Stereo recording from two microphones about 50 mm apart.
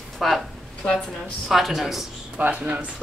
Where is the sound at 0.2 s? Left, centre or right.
Centre.